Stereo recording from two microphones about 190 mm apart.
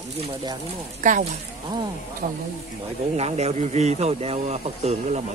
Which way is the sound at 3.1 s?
35° right (ahead or behind).